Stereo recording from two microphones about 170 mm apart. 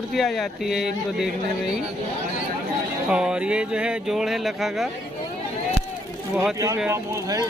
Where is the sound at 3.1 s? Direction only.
5° right (ahead or behind).